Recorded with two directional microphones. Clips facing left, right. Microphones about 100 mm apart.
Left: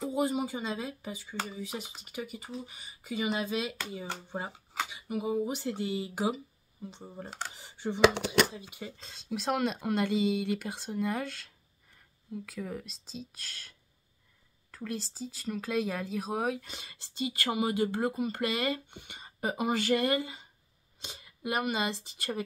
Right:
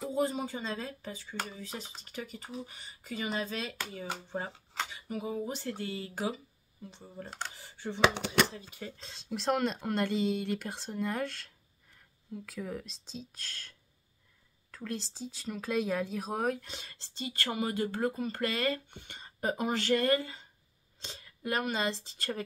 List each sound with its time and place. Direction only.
0.1 s speech: 10° left (ahead or behind)
7.2 s speech: 10° left (ahead or behind)
7.5 s speech: 20° left (ahead or behind)